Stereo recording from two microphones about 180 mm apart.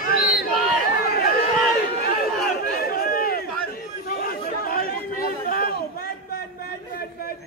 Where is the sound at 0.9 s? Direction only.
55° left (ahead or behind).